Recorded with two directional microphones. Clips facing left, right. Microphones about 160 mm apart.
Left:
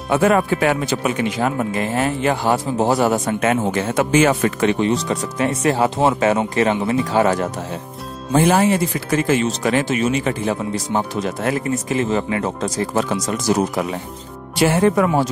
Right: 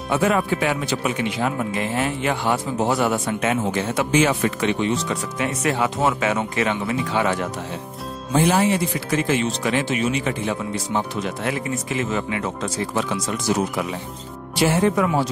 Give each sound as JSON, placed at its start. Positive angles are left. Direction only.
{"t": 0.1, "sound": "speech", "side_deg": 50}
{"t": 8.3, "sound": "speech", "side_deg": 50}
{"t": 14.6, "sound": "speech", "side_deg": 55}